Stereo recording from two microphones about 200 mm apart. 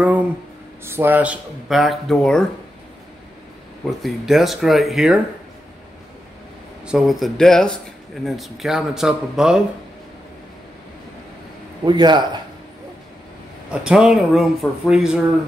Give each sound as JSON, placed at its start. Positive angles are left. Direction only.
{"t": 0.0, "sound": "a sound", "side_deg": -10}
{"t": 0.8, "sound": "speech", "side_deg": -10}
{"t": 4.0, "sound": "speech", "side_deg": 0}
{"t": 6.9, "sound": "speech", "side_deg": 0}
{"t": 11.8, "sound": "a man's voice", "side_deg": -20}
{"t": 13.7, "sound": "speech", "side_deg": -5}